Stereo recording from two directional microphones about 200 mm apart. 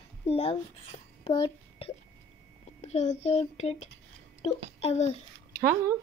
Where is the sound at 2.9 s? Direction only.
35° left (ahead or behind).